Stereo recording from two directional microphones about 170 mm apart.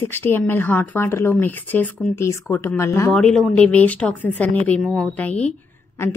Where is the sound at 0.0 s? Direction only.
10° left (ahead or behind).